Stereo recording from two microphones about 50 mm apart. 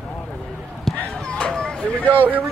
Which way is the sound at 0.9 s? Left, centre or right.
Centre.